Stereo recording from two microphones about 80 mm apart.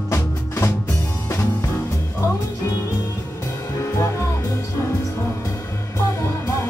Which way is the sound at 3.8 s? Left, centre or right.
Left.